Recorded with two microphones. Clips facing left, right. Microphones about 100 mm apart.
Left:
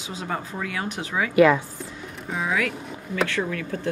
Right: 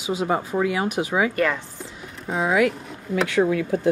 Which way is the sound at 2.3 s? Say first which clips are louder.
Right 6 dB; 30° right (ahead or behind).